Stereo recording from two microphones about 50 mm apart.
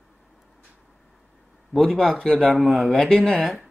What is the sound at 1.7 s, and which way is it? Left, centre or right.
A man's voice, centre.